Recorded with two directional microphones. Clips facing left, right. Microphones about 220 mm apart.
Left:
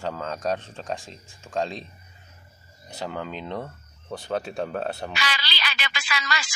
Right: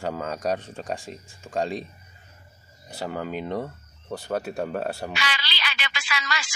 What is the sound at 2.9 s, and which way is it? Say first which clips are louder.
Speech: right 2 dB; 5° right (ahead or behind).